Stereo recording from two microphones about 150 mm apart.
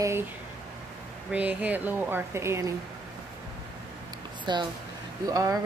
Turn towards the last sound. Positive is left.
turn(degrees=-25)  # may be behind; listen again after turning